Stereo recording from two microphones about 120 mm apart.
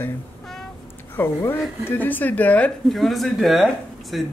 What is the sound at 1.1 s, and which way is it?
Speech, 15° left (ahead or behind).